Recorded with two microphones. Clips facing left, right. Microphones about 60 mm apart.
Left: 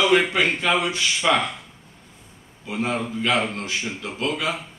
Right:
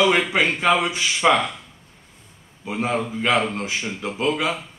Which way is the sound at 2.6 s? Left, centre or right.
Centre.